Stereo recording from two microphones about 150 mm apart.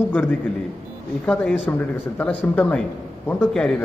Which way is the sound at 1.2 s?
10° left (ahead or behind).